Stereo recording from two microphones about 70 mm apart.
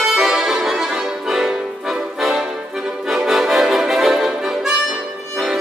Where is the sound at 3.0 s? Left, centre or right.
Centre.